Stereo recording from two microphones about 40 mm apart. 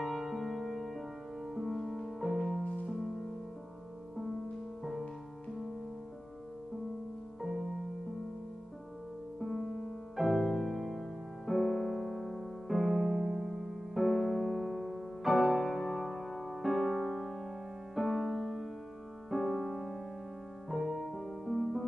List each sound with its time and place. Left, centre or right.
0.0 s music: centre
2.6 s music: left
2.9 s music: centre
7.4 s music: centre
9.4 s music: centre